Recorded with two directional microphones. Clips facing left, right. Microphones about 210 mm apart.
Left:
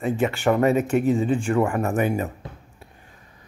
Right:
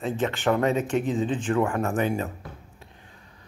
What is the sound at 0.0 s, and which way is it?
Speech, 10° left (ahead or behind).